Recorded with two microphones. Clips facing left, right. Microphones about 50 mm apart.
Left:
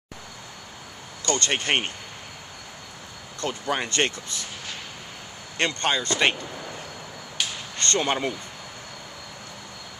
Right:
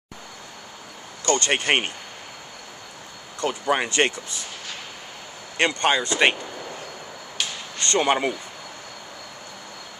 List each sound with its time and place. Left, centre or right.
1.2 s speech: centre
3.3 s speech: centre
5.6 s speech: centre
7.3 s a sound: centre